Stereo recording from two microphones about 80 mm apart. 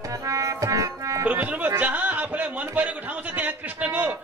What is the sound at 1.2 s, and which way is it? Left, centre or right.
A man's voice, right.